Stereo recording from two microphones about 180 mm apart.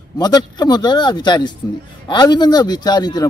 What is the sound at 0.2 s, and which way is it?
A man's voice, 20° left (ahead or behind).